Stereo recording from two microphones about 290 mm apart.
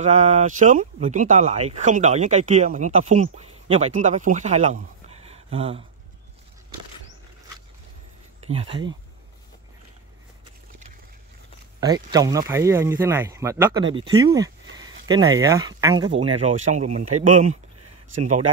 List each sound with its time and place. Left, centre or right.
0.0 s speech: right
8.5 s speech: centre
11.8 s speech: centre